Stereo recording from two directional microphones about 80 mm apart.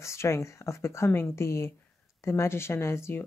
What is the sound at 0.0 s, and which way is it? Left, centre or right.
Speech, left.